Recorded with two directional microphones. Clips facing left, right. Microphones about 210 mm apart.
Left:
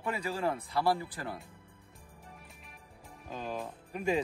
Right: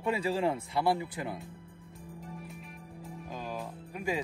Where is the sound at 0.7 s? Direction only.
20° right (ahead or behind).